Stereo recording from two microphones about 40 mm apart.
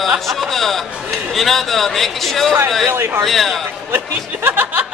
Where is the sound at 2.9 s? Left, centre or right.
Right.